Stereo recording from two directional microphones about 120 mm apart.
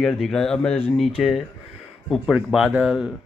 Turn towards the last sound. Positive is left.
turn(degrees=-5)  # may be behind; listen again after turning